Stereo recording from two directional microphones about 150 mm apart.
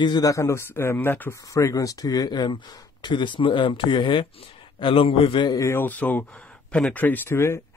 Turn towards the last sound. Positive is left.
turn(degrees=15)  # may be behind; listen again after turning